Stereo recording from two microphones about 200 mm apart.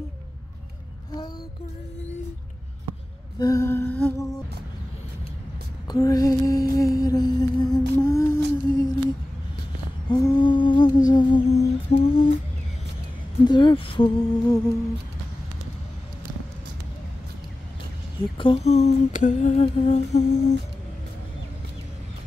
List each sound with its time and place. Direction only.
3.3 s humming: 15° left (ahead or behind)
5.9 s a sound: 20° left (ahead or behind)
8.0 s humming: 15° left (ahead or behind)
10.0 s humming: 20° left (ahead or behind)
13.5 s speech: 25° left (ahead or behind)
18.4 s humming: 30° left (ahead or behind)